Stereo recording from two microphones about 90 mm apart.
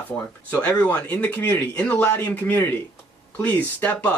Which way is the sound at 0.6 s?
15° left (ahead or behind).